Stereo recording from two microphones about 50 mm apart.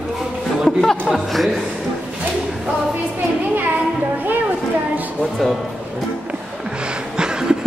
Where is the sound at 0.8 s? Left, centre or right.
Centre.